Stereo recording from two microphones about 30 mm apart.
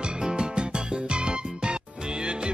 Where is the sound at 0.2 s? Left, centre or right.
Right.